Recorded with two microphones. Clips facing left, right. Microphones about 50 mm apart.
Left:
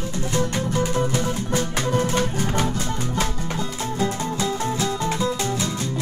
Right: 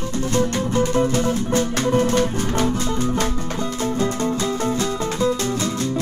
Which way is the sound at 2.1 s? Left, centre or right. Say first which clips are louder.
Right 3 dB; centre.